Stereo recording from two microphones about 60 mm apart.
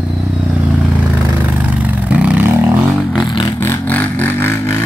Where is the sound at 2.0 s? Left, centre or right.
Right.